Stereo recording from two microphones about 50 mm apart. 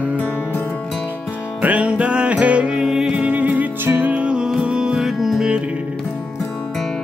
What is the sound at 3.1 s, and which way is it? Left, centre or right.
Music, right.